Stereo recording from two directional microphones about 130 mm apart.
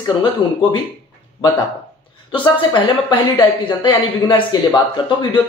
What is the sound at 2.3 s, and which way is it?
Speech, 40° left (ahead or behind).